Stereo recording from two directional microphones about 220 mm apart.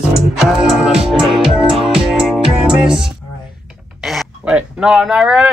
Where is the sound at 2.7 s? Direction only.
5° right (ahead or behind).